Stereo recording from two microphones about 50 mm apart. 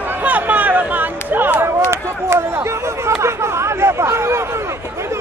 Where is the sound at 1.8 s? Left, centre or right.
Right.